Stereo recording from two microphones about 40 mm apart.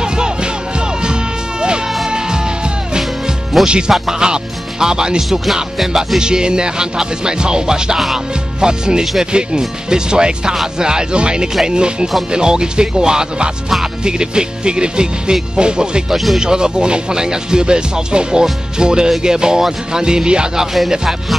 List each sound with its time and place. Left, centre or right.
0.0 s music: right
3.6 s speech: right
5.5 s music: centre
6.1 s speech: centre